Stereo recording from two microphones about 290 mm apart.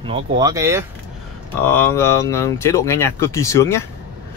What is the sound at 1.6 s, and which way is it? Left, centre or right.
Speech, centre.